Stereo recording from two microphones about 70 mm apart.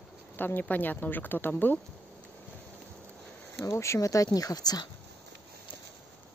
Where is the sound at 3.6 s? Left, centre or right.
Left.